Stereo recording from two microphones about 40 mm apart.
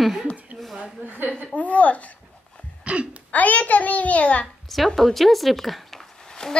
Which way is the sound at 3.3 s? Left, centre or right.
Left.